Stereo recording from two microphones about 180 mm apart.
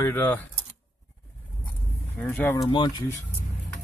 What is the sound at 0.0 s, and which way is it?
Speech, 10° left (ahead or behind).